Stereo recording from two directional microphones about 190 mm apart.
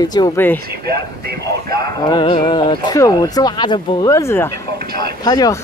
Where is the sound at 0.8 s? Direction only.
55° right (ahead or behind).